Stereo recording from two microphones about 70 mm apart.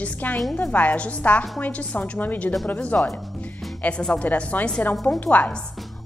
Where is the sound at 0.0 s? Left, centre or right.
Left.